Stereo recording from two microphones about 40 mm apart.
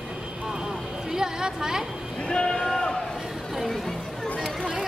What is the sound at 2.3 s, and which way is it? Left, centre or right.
Speech, left.